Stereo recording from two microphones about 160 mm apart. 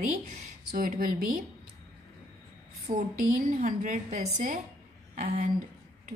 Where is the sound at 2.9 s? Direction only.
55° right (ahead or behind).